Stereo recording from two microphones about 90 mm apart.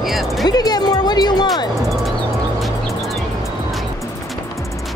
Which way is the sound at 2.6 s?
Centre (ahead or behind).